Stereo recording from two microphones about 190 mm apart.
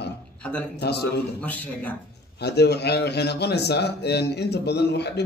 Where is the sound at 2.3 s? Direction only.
60° left (ahead or behind).